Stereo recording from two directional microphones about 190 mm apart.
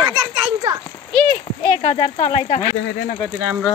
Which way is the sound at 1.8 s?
30° left (ahead or behind).